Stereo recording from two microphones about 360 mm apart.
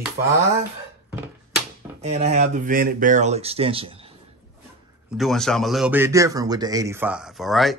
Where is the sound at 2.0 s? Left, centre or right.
Centre.